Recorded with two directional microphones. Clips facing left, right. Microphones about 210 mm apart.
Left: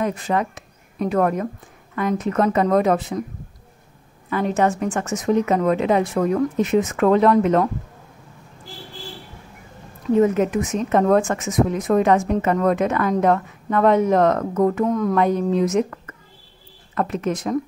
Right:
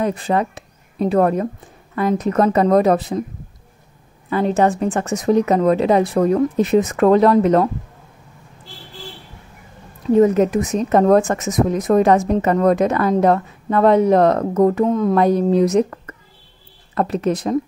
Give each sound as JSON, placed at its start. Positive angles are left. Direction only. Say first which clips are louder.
{"t": 0.0, "sound": "a woman's voice", "louder": "right 3 dB", "side_deg": -35}
{"t": 4.3, "sound": "a woman's voice", "louder": "right 3 dB", "side_deg": -30}
{"t": 10.1, "sound": "a woman's voice", "louder": "right 4 dB", "side_deg": -35}